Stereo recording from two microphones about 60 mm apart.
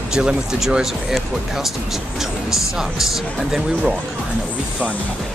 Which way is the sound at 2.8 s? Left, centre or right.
Centre.